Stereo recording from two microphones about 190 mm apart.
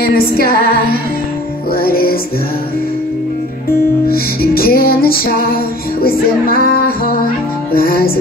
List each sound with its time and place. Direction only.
0.0 s music: 50° left (ahead or behind)
1.7 s music: 50° left (ahead or behind)
4.1 s music: 50° left (ahead or behind)